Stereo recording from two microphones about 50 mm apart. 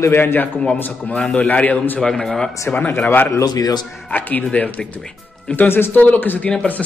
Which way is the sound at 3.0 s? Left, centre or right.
Left.